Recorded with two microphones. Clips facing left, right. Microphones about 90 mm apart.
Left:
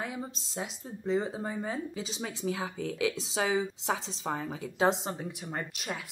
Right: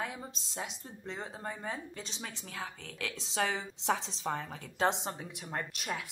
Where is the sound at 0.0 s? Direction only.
Centre (ahead or behind).